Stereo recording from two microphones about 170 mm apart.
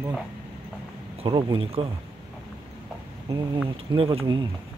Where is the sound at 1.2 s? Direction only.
30° right (ahead or behind).